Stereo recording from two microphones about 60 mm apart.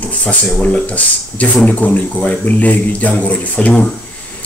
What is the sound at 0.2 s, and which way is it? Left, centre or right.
A man's voice, left.